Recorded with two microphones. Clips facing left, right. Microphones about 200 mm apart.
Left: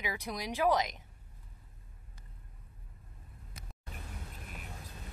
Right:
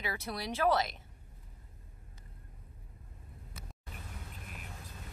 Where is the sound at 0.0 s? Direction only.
15° left (ahead or behind).